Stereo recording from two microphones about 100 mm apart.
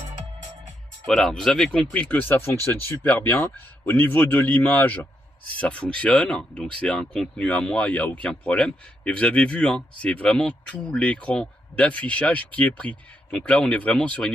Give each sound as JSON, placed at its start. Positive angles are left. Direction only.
{"t": 1.0, "sound": "speech", "side_deg": 5}
{"t": 1.9, "sound": "speech", "side_deg": 15}